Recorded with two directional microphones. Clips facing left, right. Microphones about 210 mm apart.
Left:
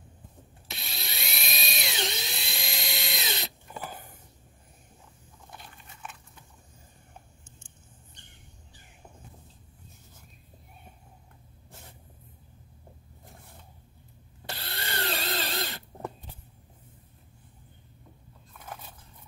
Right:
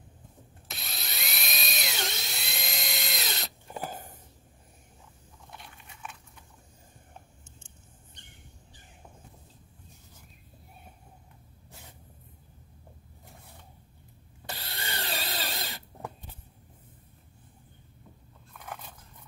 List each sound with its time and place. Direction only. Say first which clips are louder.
0.7 s drill: left 1 dB; centre (ahead or behind)
3.8 s a sound: right 3 dB; 45° right (ahead or behind)
5.6 s dog: even; centre (ahead or behind)
14.5 s drill: left 2 dB; 15° right (ahead or behind)